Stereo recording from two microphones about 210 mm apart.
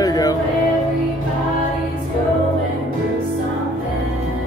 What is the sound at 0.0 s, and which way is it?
Music, 15° left (ahead or behind).